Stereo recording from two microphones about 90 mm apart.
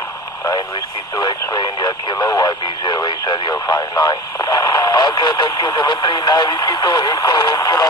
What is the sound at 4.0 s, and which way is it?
Speech, 45° left (ahead or behind).